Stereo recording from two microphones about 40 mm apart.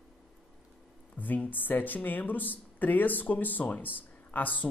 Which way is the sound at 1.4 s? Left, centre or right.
Left.